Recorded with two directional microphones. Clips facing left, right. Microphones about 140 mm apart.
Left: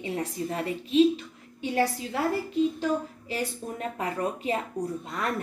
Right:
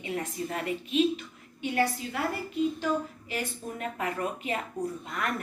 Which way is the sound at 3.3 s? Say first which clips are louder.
Left 6 dB; 30° left (ahead or behind).